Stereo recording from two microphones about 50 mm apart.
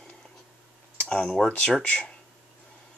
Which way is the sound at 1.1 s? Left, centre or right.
Left.